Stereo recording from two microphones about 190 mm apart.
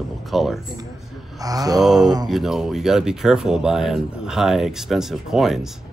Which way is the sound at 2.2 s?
Centre (ahead or behind).